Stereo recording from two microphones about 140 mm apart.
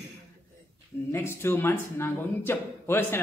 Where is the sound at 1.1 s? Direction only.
15° left (ahead or behind).